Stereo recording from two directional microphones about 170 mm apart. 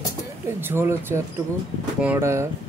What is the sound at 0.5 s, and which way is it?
Speech, 15° right (ahead or behind).